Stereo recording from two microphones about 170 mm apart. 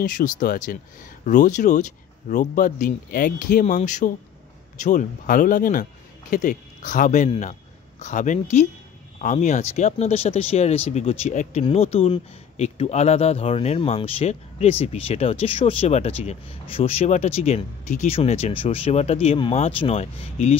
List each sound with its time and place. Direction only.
0.0 s speech: 55° left (ahead or behind)